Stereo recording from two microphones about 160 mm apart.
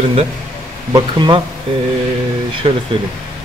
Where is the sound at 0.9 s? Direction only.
30° right (ahead or behind).